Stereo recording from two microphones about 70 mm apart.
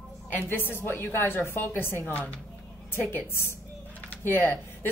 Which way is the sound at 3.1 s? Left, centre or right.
Left.